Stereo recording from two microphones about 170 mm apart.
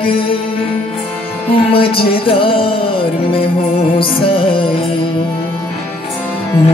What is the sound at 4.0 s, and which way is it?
Music, 30° left (ahead or behind).